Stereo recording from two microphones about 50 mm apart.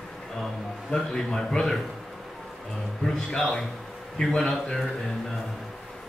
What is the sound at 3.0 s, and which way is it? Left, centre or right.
A man's voice, centre.